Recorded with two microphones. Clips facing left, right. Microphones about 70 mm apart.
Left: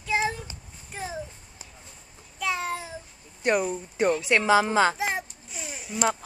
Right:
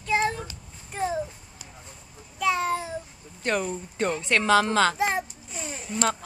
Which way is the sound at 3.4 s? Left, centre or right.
Centre.